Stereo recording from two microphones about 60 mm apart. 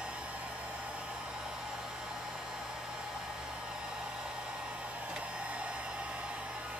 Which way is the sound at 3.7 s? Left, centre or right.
Centre.